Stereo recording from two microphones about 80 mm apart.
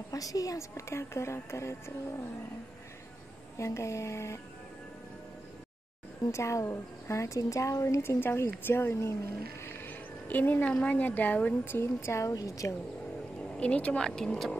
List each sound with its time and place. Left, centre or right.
0.1 s speech: left
3.5 s speech: left
6.3 s speech: left
9.6 s a sound: left
10.7 s a woman's voice: centre; by 12.7 s left
13.6 s speech: centre